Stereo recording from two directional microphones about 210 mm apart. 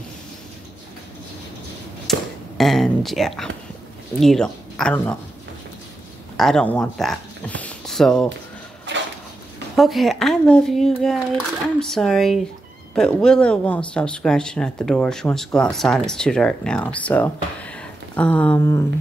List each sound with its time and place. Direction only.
2.1 s a sound: centre (ahead or behind)
2.5 s speech: centre (ahead or behind)
6.3 s speech: centre (ahead or behind)
9.8 s speech: centre (ahead or behind)